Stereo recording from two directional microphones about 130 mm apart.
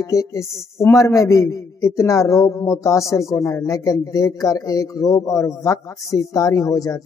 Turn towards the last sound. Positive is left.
turn(degrees=25)  # may be behind; listen again after turning